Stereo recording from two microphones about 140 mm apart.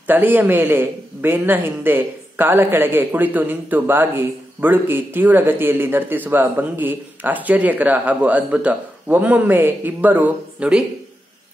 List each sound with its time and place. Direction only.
0.0 s a man's voice: 15° right (ahead or behind)